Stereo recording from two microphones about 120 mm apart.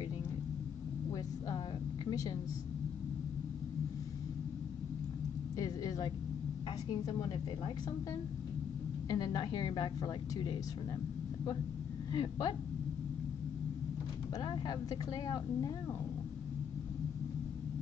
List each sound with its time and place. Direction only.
2.0 s a sound: 30° left (ahead or behind)
5.6 s a woman's voice: 30° left (ahead or behind)
12.1 s a woman's voice: 35° left (ahead or behind)
14.4 s a woman's voice: 40° left (ahead or behind)